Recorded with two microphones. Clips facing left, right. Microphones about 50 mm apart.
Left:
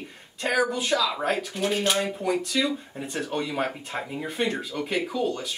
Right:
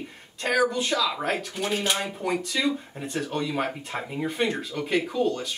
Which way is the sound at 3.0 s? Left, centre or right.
Centre.